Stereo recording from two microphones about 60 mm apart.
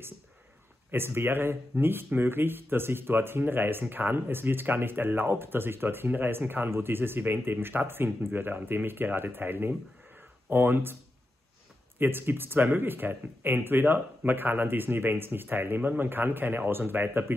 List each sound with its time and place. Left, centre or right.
0.9 s speech: right
12.0 s speech: right